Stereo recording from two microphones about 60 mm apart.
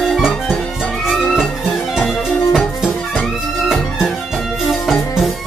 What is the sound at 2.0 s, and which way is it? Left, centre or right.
Music, centre.